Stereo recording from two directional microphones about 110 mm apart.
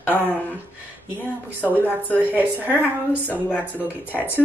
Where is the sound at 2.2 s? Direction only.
15° right (ahead or behind).